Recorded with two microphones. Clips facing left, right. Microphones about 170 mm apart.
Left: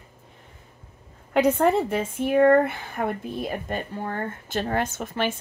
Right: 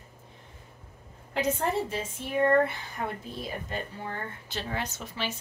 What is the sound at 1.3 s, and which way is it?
Speech, 60° left (ahead or behind).